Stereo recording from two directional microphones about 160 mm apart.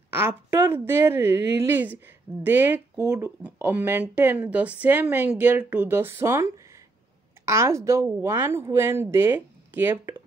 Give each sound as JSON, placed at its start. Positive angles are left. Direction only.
{"t": 0.1, "sound": "speech", "side_deg": -15}